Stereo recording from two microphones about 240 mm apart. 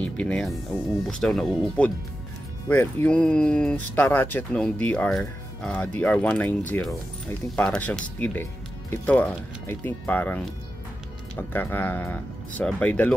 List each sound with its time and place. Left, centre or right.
0.0 s speech: centre